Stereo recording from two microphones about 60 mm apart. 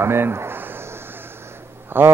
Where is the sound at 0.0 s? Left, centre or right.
Right.